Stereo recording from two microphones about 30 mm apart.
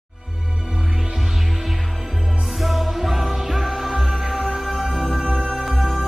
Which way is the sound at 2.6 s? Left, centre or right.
Centre.